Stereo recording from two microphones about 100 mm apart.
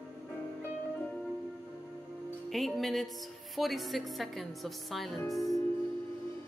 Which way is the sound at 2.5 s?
Centre (ahead or behind).